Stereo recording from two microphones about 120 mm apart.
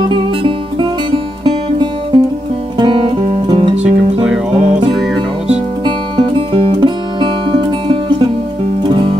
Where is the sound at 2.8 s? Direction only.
40° right (ahead or behind).